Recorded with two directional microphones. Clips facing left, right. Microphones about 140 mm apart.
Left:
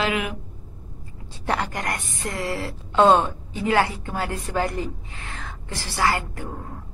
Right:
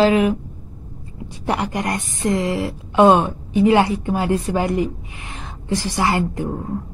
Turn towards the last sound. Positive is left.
turn(degrees=-20)  # may be behind; listen again after turning